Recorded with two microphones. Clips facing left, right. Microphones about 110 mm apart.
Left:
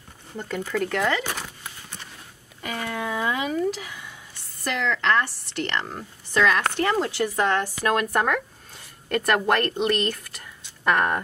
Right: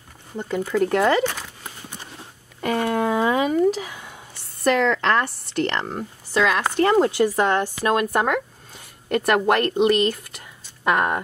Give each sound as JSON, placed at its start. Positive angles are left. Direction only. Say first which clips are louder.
{"t": 0.4, "sound": "a woman's voice", "louder": "right 5 dB", "side_deg": -10}
{"t": 0.8, "sound": "speech", "louder": "right 7 dB", "side_deg": -35}
{"t": 1.2, "sound": "a sound", "louder": "right 6 dB", "side_deg": 10}
{"t": 2.6, "sound": "a sound", "louder": "right 8 dB", "side_deg": -40}
{"t": 4.6, "sound": "speech", "louder": "right 5 dB", "side_deg": -40}
{"t": 6.3, "sound": "a woman's voice", "louder": "right 1 dB", "side_deg": -5}
{"t": 6.8, "sound": "speech", "louder": "right 10 dB", "side_deg": -30}
{"t": 7.2, "sound": "speech", "louder": "right 3 dB", "side_deg": -20}
{"t": 10.0, "sound": "a sound", "louder": "right 5 dB", "side_deg": -15}